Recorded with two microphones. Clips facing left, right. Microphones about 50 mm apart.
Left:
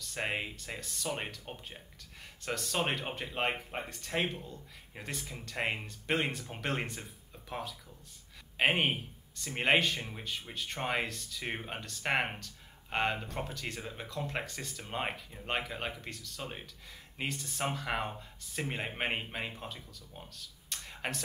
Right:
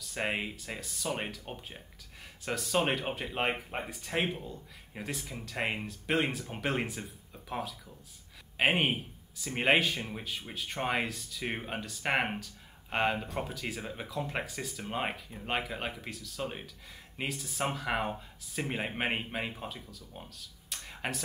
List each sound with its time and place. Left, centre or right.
0.0 s speech: centre